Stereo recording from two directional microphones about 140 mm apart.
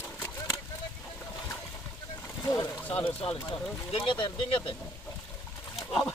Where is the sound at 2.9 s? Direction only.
40° left (ahead or behind).